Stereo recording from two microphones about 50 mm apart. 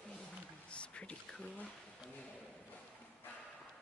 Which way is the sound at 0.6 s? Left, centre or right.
Left.